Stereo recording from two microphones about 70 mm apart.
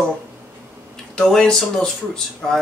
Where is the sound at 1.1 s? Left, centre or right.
Centre.